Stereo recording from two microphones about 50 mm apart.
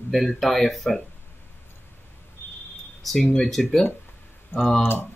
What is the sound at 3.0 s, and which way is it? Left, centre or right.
Speech, centre.